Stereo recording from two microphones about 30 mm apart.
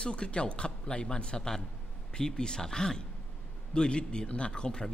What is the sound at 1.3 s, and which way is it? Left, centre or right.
A man's voice, centre.